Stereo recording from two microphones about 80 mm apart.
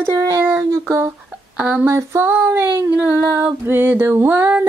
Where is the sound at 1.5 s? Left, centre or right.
Centre.